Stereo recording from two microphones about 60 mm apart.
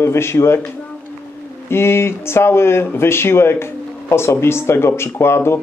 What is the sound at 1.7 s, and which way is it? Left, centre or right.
Speech, left.